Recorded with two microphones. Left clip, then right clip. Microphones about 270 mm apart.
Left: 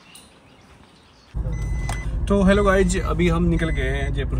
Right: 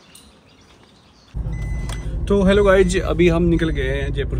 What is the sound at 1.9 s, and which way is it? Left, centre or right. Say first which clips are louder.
Speech: right 3 dB; centre.